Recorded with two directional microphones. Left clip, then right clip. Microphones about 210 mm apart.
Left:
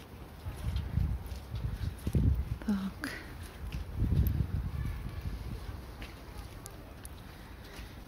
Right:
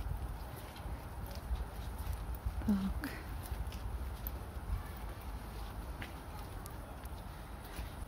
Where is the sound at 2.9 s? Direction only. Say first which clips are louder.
Left 4 dB; centre (ahead or behind).